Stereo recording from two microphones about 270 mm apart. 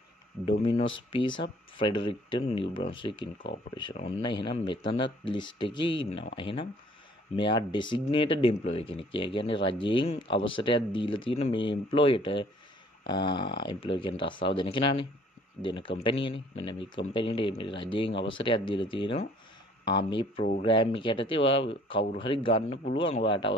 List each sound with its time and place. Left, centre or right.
0.5 s speech: centre